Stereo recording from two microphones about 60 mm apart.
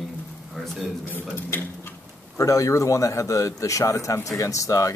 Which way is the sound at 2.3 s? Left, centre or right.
Left.